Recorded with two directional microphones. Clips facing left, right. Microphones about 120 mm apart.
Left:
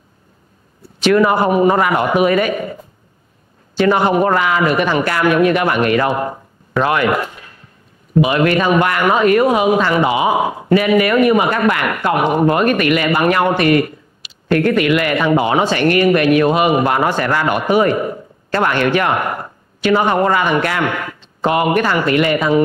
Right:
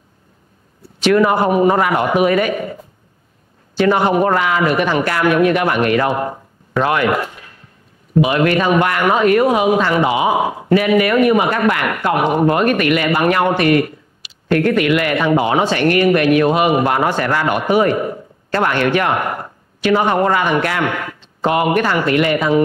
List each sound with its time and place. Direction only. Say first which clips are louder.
1.0 s speech: even; 25° left (ahead or behind)
3.8 s speech: even; 25° left (ahead or behind)